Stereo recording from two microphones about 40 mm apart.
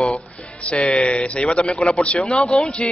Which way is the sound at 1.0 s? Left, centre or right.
Left.